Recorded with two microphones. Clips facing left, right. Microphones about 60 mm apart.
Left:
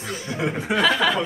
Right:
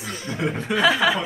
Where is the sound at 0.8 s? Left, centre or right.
Centre.